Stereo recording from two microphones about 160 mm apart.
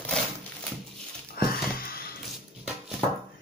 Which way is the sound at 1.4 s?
70° left (ahead or behind).